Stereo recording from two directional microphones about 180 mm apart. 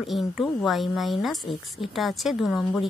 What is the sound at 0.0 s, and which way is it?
A woman's voice, centre (ahead or behind).